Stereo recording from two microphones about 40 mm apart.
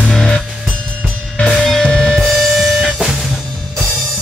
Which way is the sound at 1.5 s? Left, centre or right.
Centre.